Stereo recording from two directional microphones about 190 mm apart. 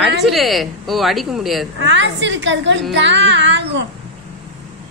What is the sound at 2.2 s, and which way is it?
Music, 75° right (ahead or behind).